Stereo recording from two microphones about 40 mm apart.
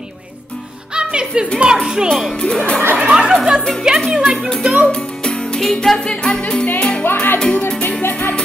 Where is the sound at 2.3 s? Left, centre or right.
Left.